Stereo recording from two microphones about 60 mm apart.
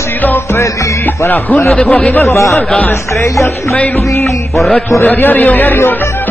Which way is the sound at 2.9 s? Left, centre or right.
Left.